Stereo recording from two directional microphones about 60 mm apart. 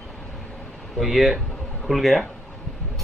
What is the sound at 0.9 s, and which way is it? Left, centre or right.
Speech, centre.